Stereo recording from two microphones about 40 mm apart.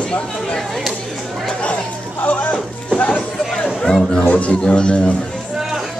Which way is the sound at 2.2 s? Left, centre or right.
Left.